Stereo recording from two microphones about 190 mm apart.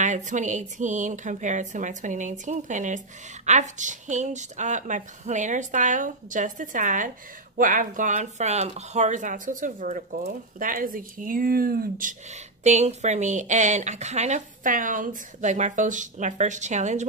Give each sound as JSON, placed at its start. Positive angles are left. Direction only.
{"t": 0.0, "sound": "speech", "side_deg": -40}